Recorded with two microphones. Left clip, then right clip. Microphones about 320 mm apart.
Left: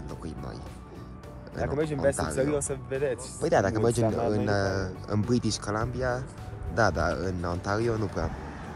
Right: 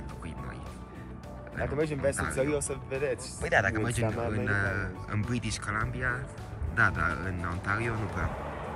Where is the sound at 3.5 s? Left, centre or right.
Centre.